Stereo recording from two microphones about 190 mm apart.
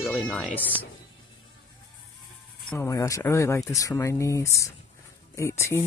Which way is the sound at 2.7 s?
15° left (ahead or behind).